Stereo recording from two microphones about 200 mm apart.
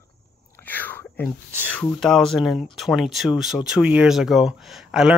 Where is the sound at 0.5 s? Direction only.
10° left (ahead or behind).